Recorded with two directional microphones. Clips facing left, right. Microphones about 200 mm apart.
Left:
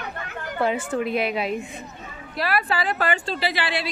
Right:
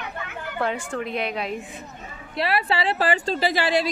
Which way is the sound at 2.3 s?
25° right (ahead or behind).